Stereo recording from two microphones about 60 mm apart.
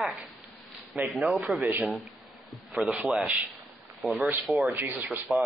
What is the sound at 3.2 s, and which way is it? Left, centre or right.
Speech, right.